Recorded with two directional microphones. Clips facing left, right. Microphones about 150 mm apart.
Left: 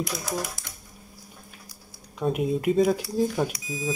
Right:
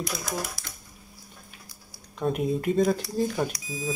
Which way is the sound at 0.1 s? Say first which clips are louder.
Left 2 dB; 5° left (ahead or behind).